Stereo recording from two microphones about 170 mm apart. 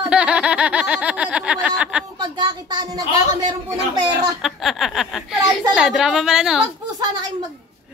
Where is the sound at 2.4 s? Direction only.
25° right (ahead or behind).